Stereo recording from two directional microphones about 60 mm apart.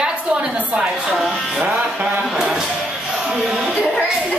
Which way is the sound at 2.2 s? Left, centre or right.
Centre.